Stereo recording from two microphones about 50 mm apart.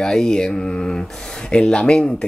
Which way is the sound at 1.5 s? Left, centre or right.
Centre.